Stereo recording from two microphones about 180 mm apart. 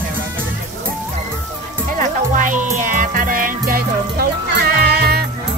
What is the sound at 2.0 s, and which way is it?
Music, 45° right (ahead or behind).